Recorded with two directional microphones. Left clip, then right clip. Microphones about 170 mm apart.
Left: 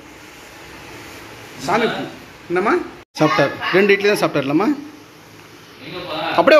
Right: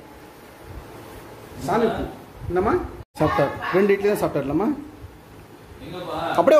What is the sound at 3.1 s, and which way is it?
Speech, centre (ahead or behind).